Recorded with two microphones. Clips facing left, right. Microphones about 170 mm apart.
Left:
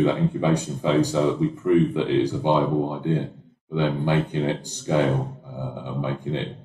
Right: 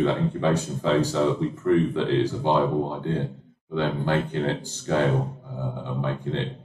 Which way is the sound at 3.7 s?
15° left (ahead or behind).